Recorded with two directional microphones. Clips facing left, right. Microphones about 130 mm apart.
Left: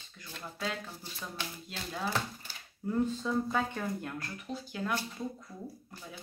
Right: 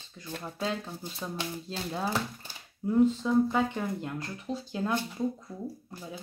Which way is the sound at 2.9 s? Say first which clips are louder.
Right 7 dB; 10° right (ahead or behind).